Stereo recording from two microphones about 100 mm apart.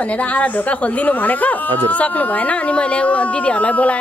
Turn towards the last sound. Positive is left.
turn(degrees=15)  # may be behind; listen again after turning